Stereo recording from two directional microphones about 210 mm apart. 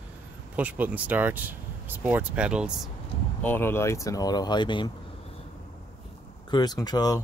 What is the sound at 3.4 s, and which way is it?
Speech, 10° left (ahead or behind).